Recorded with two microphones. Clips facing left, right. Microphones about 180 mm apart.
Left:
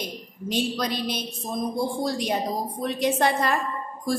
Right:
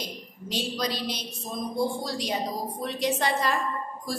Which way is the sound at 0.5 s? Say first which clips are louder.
Left 4 dB; 55° left (ahead or behind).